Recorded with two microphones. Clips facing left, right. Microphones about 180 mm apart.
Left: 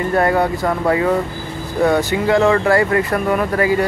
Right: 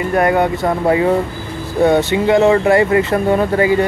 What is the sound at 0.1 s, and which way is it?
Speech, 20° right (ahead or behind).